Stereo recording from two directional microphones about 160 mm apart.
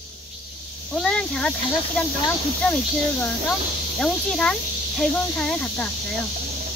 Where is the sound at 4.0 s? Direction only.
5° left (ahead or behind).